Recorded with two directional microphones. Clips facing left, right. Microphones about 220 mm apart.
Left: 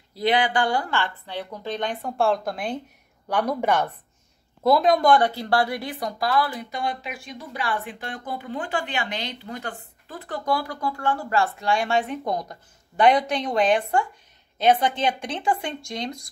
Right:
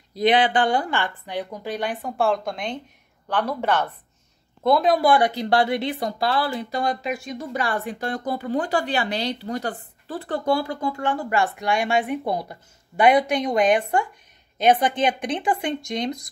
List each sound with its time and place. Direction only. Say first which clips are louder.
0.1 s a woman's voice: right 3 dB; 20° right (ahead or behind); by 3.9 s 10° left (ahead or behind)
4.6 s a woman's voice: even; centre (ahead or behind); by 16.2 s 20° right (ahead or behind)